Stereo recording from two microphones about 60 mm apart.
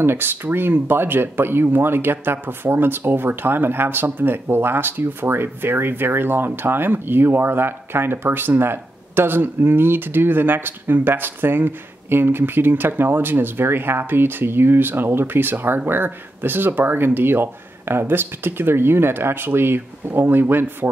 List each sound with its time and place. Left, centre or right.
0.0 s speech: right